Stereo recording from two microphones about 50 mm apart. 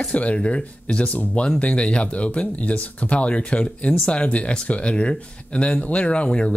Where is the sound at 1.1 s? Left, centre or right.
Left.